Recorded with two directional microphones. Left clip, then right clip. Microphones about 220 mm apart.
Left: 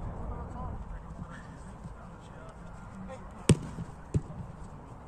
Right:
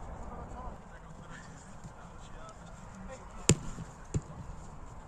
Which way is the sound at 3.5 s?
10° right (ahead or behind).